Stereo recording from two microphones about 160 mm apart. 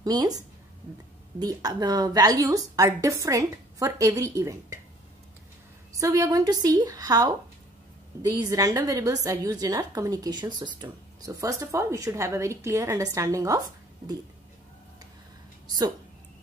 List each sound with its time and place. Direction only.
0.0 s a woman's voice: 20° right (ahead or behind)
1.4 s a woman's voice: 25° right (ahead or behind)
5.9 s a woman's voice: 20° right (ahead or behind)
15.6 s a sound: 25° right (ahead or behind)